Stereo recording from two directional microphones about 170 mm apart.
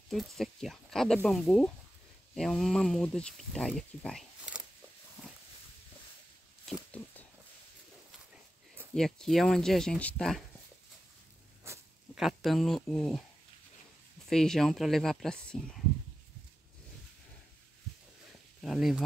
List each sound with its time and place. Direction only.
0.1 s speech: centre (ahead or behind)
6.7 s a sound: 5° left (ahead or behind)
8.9 s speech: centre (ahead or behind)
11.7 s a sound: 15° right (ahead or behind)
12.2 s speech: centre (ahead or behind)
14.3 s speech: 5° left (ahead or behind)
18.6 s speech: centre (ahead or behind)